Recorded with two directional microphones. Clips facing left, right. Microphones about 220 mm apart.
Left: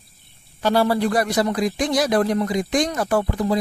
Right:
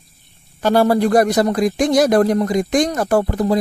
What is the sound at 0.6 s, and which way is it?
Speech, 45° right (ahead or behind).